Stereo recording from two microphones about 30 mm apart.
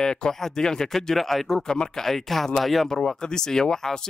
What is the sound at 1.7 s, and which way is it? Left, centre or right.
Speech, left.